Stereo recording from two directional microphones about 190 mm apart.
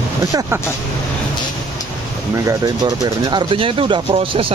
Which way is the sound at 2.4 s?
20° right (ahead or behind).